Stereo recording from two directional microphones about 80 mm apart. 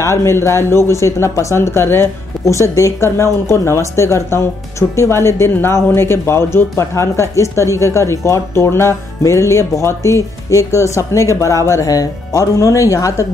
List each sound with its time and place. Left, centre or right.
0.0 s speech: left